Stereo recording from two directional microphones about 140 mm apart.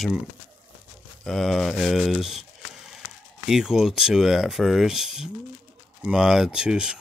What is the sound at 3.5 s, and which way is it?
Speech, 5° right (ahead or behind).